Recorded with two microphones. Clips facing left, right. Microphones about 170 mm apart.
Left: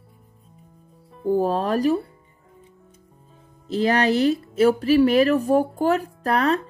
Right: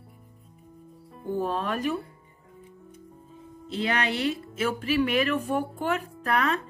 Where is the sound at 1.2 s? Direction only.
35° left (ahead or behind).